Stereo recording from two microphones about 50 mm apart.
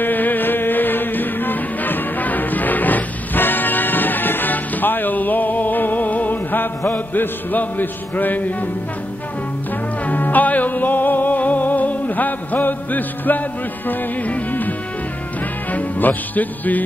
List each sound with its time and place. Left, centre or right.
0.0 s music: left
10.0 s music: left
15.7 s speech: left